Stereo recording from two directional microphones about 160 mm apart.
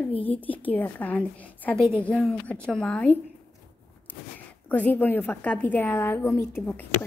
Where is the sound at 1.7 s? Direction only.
15° right (ahead or behind).